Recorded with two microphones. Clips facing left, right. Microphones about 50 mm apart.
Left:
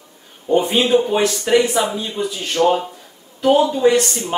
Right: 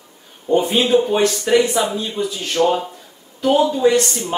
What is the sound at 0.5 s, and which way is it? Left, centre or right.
Speech, centre.